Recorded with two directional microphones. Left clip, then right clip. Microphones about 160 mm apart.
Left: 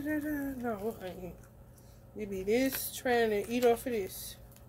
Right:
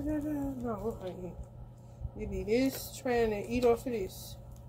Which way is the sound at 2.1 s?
25° left (ahead or behind).